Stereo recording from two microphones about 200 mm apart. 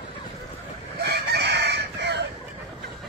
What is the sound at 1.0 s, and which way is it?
Chicken, 55° right (ahead or behind).